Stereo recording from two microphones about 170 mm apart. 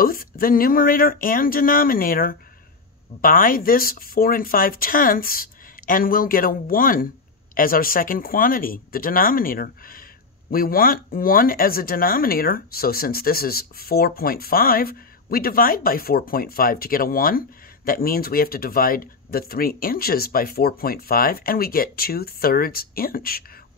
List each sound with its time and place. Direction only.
0.0 s speech: 60° left (ahead or behind)